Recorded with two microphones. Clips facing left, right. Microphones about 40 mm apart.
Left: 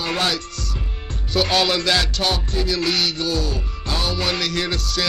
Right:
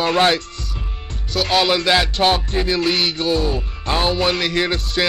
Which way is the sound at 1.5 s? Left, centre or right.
Centre.